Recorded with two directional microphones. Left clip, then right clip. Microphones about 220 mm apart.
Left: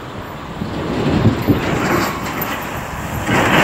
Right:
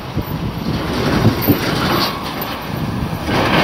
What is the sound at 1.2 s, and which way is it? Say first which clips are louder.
Train: right 1 dB; 60° right (ahead or behind).